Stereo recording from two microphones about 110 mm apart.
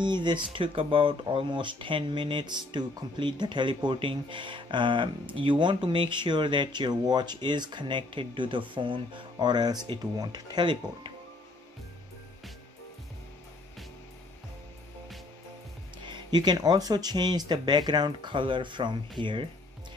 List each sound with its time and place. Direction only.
0.0 s speech: 45° right (ahead or behind)
16.1 s speech: 40° right (ahead or behind)